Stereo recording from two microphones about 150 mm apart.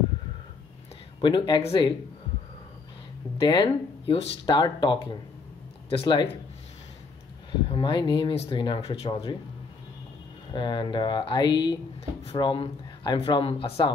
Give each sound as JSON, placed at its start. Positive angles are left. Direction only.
{"t": 1.2, "sound": "speech", "side_deg": 30}
{"t": 3.3, "sound": "speech", "side_deg": 35}
{"t": 7.6, "sound": "speech", "side_deg": 35}
{"t": 10.5, "sound": "speech", "side_deg": 30}